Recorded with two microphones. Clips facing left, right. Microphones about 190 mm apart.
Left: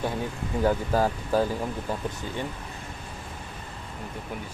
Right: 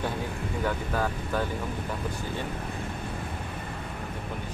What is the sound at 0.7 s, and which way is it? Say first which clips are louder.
Speech: left 6 dB; 35° left (ahead or behind).